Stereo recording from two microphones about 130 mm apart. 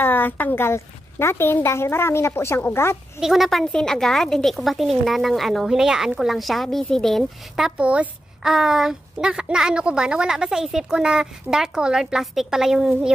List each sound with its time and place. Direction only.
0.0 s a woman's voice: 15° left (ahead or behind)
3.2 s speech: centre (ahead or behind)